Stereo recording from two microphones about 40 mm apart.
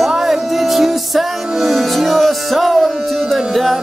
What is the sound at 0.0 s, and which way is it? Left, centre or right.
Music, centre.